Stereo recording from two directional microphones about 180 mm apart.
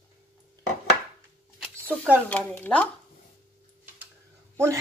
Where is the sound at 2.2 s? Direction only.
10° left (ahead or behind).